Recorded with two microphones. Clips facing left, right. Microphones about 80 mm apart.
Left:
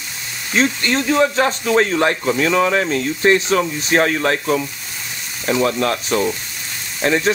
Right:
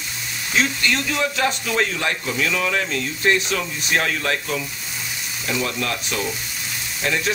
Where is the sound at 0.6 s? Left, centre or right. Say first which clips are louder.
Left 4 dB; left.